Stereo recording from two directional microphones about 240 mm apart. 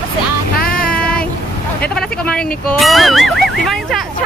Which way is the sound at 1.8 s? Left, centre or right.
Centre.